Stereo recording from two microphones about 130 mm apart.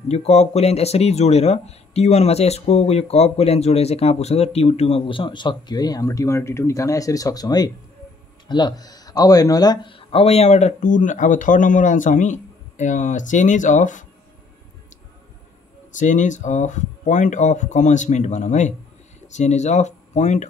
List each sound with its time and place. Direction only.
0.1 s speech: 55° left (ahead or behind); by 14.0 s 75° left (ahead or behind)
15.9 s speech: 75° left (ahead or behind)